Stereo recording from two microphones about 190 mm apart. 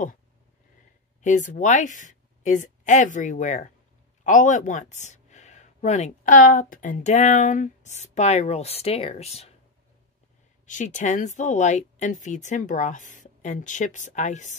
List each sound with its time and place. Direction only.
1.2 s a woman's voice: 40° left (ahead or behind)
10.7 s speech: 40° left (ahead or behind)